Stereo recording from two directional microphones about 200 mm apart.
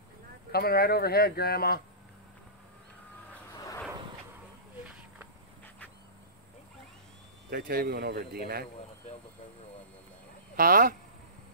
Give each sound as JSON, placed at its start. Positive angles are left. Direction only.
{"t": 0.5, "sound": "speech", "side_deg": 50}
{"t": 7.5, "sound": "speech", "side_deg": -50}
{"t": 10.5, "sound": "speech", "side_deg": -45}